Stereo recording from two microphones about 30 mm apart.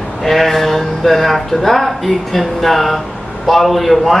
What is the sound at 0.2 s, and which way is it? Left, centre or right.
Speech, centre.